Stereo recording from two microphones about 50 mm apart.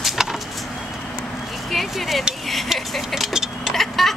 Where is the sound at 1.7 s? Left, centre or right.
Centre.